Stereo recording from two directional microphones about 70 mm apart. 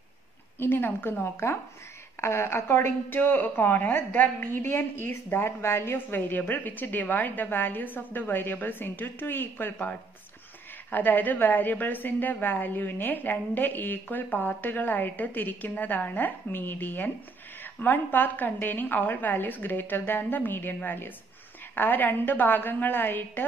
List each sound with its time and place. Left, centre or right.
0.6 s a woman's voice: left